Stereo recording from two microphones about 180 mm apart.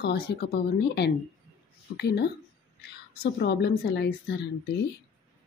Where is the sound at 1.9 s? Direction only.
65° left (ahead or behind).